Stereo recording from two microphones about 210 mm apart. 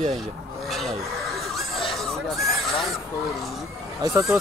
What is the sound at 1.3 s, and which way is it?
Snicker, centre (ahead or behind).